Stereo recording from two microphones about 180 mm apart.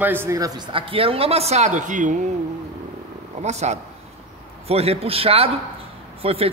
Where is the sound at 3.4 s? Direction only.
40° right (ahead or behind).